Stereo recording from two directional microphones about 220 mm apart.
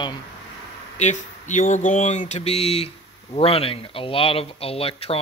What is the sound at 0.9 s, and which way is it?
Speech, 35° left (ahead or behind).